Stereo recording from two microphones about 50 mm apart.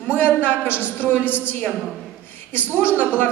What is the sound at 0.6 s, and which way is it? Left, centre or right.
Speech, right.